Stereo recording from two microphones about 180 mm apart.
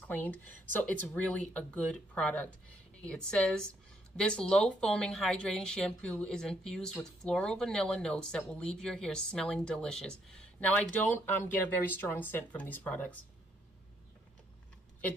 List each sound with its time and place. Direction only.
0.0 s a woman's voice: 10° left (ahead or behind)